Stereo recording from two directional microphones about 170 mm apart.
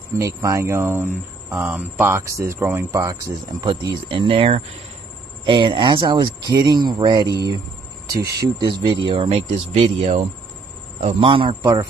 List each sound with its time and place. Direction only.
0.4 s speech: 20° right (ahead or behind)
8.4 s speech: 25° right (ahead or behind)